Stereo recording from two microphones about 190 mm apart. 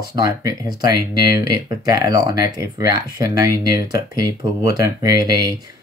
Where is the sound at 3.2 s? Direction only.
20° right (ahead or behind).